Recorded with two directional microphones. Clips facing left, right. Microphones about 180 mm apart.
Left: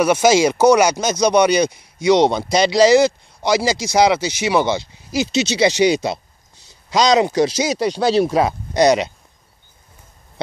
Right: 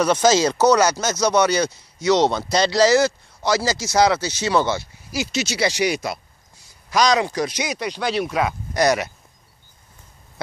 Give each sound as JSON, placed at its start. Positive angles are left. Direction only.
{"t": 0.0, "sound": "speech", "side_deg": 10}
{"t": 8.7, "sound": "speech", "side_deg": 20}